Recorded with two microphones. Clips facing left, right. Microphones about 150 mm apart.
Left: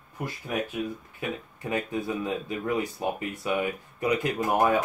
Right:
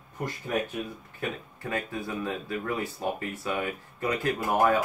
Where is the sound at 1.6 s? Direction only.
20° left (ahead or behind).